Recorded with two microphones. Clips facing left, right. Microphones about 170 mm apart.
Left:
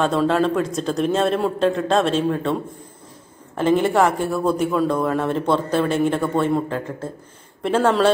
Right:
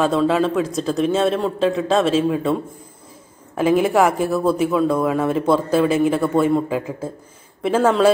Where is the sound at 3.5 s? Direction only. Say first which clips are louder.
Right 1 dB; 5° right (ahead or behind).